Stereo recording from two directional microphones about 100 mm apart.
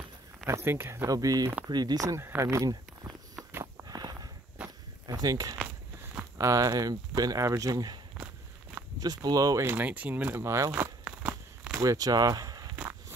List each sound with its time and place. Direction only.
0.5 s speech: 25° right (ahead or behind)
1.0 s speech: 40° right (ahead or behind)
2.7 s walk: 40° right (ahead or behind)
3.8 s walk: 40° right (ahead or behind)
4.6 s a sound: 40° right (ahead or behind)
6.3 s speech: 35° right (ahead or behind)
9.0 s speech: 40° right (ahead or behind)
9.7 s speech: 20° right (ahead or behind)
10.3 s speech: 30° right (ahead or behind)
11.1 s a sound: 10° right (ahead or behind)
11.7 s speech: 35° right (ahead or behind)